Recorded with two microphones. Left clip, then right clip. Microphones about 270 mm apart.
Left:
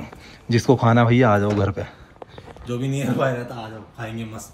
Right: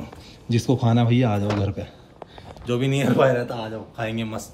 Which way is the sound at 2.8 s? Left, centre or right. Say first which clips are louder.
Right 4 dB; centre.